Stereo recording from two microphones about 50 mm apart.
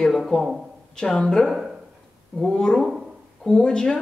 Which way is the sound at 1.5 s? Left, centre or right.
Centre.